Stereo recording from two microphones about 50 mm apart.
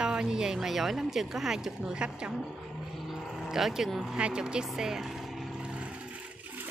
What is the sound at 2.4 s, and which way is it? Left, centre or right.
Vehicle, centre.